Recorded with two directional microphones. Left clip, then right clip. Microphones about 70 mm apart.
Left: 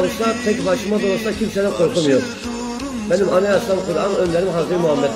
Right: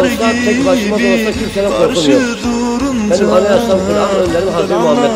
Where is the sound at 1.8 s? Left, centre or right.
Left.